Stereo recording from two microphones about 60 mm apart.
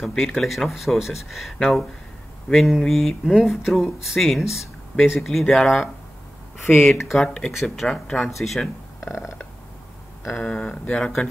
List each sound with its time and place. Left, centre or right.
0.0 s speech: centre
6.7 s speech: left
7.1 s speech: centre
10.2 s speech: left
10.5 s speech: centre